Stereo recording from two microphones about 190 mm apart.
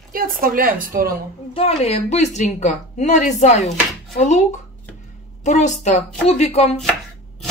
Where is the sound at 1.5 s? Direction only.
35° left (ahead or behind).